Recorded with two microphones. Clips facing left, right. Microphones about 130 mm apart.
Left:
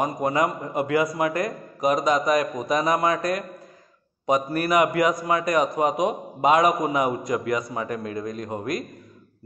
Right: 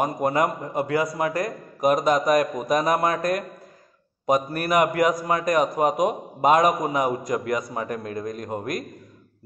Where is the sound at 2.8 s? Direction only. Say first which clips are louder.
Even; 50° right (ahead or behind).